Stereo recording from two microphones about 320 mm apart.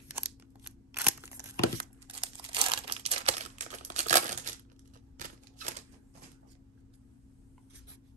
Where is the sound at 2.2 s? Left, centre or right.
Centre.